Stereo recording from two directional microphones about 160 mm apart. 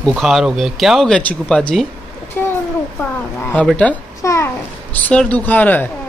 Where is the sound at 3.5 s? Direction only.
10° left (ahead or behind).